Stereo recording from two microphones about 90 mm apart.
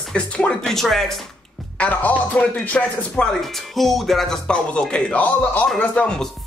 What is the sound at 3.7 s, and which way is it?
Speech, centre (ahead or behind).